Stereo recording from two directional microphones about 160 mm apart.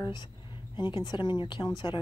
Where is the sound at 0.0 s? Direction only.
30° left (ahead or behind).